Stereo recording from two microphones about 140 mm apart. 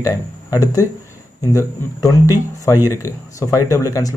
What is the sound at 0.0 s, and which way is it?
Speech, 25° left (ahead or behind).